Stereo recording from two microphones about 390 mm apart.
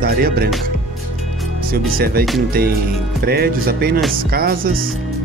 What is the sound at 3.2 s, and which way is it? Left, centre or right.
Speech, right.